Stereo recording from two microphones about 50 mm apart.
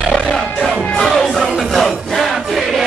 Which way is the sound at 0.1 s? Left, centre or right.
Centre.